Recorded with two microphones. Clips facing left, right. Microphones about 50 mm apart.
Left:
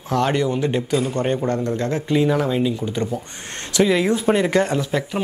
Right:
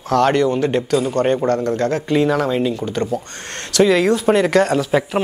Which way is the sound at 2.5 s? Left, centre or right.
Centre.